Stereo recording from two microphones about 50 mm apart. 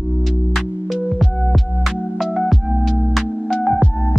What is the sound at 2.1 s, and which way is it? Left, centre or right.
Music, centre.